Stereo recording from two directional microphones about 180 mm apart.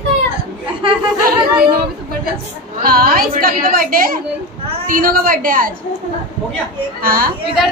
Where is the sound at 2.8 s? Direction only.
55° right (ahead or behind).